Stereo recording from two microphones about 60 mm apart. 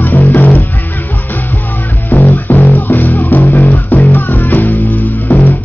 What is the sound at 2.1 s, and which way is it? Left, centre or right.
Music, left.